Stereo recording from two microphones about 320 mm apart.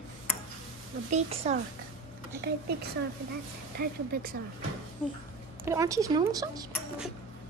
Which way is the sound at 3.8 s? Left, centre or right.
Right.